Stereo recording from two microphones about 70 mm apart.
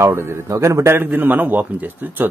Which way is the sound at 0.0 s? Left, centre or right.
Right.